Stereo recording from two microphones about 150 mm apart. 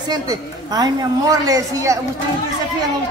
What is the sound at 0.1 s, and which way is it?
A woman's voice, 25° right (ahead or behind).